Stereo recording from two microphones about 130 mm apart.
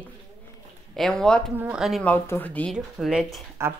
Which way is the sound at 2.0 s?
15° left (ahead or behind).